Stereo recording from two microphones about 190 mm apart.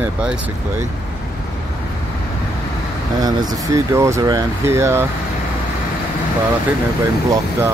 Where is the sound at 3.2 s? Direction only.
20° right (ahead or behind).